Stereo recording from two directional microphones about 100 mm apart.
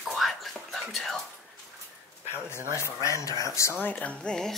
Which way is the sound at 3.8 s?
15° left (ahead or behind).